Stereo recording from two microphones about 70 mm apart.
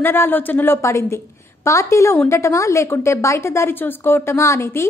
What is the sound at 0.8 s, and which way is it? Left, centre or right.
A woman's voice, left.